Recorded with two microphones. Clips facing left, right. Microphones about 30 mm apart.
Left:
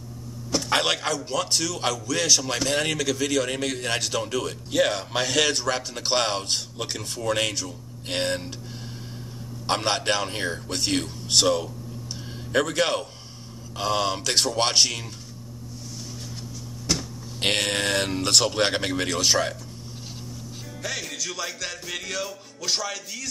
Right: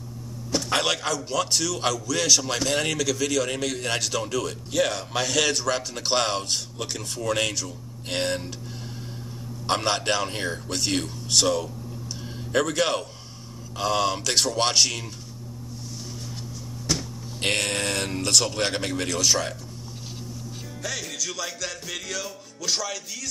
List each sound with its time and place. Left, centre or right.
0.6 s a man's voice: centre
9.7 s a man's voice: centre
11.2 s a man's voice: left
17.4 s a man's voice: left
20.8 s a man's voice: centre
21.3 s a man's voice: centre